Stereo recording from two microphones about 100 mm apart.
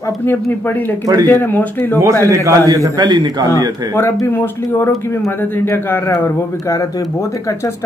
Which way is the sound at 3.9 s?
25° left (ahead or behind).